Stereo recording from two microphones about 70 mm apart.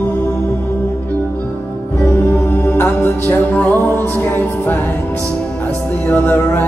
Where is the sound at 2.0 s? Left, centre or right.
Left.